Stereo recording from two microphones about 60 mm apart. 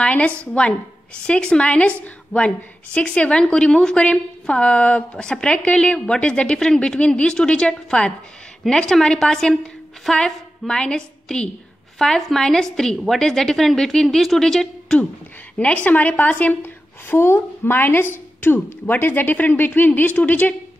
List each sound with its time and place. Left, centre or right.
0.0 s a woman's voice: left
15.5 s a woman's voice: left
17.1 s speech: left